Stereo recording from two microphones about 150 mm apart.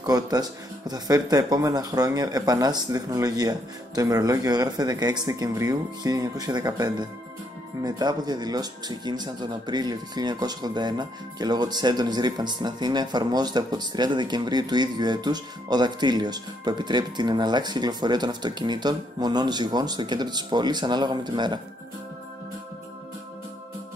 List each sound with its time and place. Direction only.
0.0 s speech: 25° right (ahead or behind)